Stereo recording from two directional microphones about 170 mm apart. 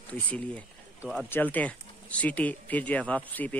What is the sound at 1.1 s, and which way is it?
Speech, 10° left (ahead or behind).